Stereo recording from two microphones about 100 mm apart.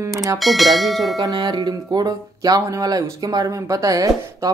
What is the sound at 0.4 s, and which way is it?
Speech, centre (ahead or behind).